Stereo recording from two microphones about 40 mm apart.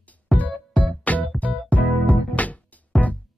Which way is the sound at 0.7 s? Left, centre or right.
Left.